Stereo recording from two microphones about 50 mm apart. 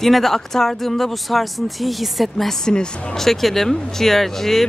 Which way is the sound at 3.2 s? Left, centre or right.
Centre.